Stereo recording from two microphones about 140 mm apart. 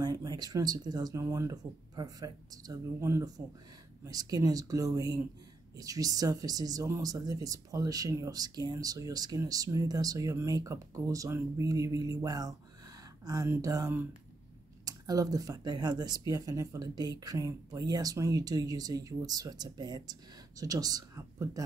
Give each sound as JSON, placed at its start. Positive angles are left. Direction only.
{"t": 0.0, "sound": "speech", "side_deg": -25}